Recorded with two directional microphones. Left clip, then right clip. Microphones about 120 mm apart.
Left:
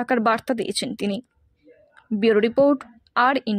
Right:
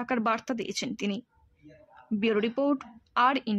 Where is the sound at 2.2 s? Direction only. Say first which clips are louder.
Left 10 dB; 40° left (ahead or behind).